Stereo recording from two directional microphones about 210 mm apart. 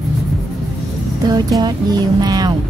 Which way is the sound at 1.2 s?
20° right (ahead or behind).